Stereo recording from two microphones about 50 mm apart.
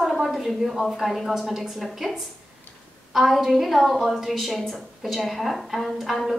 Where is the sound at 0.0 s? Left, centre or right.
Centre.